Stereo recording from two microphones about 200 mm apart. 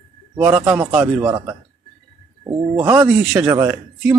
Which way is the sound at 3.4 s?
10° right (ahead or behind).